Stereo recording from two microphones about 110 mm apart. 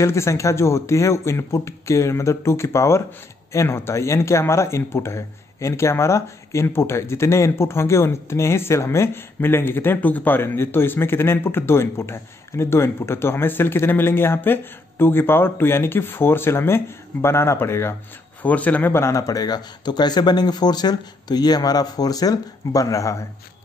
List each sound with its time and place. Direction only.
0.0 s a man's voice: 25° left (ahead or behind)